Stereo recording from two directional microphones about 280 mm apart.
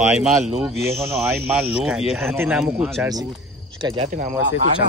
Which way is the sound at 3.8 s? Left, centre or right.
Right.